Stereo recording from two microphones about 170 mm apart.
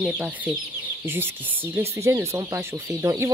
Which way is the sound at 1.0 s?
15° right (ahead or behind).